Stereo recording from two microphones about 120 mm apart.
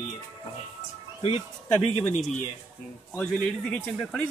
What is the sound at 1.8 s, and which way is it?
Speech, 60° left (ahead or behind).